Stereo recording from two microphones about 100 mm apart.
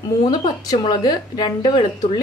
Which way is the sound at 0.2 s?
45° left (ahead or behind).